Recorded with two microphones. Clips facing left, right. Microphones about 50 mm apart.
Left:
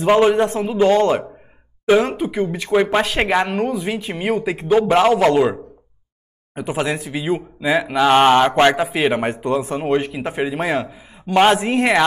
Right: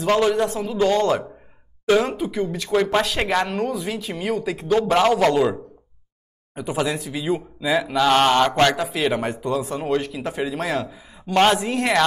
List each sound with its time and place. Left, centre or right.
0.0 s speech: left
0.7 s speech: centre
5.3 s speech: left